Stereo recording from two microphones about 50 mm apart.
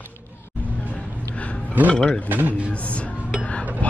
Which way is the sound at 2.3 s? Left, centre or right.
Right.